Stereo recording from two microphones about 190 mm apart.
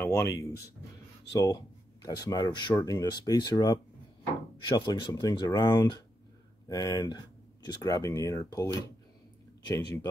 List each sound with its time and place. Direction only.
0.0 s speech: 15° left (ahead or behind)